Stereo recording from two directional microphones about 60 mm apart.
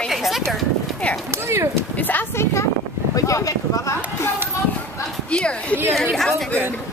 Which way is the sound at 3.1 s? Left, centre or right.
Left.